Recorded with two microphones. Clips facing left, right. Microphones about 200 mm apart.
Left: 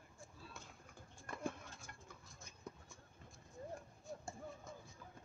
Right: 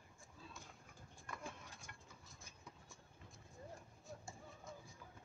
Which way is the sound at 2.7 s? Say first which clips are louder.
Left 9 dB; 45° left (ahead or behind).